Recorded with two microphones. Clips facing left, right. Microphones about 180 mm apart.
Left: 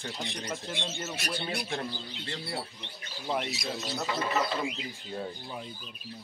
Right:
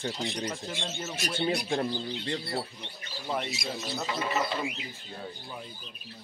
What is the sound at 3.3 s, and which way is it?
Speech, centre (ahead or behind).